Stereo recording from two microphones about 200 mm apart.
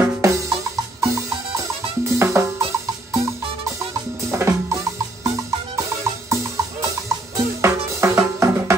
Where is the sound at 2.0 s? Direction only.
15° right (ahead or behind).